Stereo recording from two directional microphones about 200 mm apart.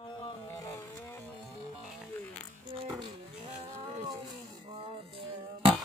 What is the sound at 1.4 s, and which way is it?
Music, centre (ahead or behind).